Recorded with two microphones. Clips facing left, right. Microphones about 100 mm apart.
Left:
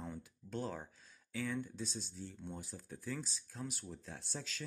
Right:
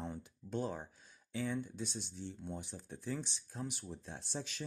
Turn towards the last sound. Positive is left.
turn(degrees=-20)  # may be behind; listen again after turning